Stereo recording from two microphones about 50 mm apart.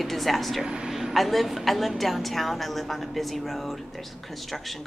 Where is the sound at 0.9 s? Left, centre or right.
Centre.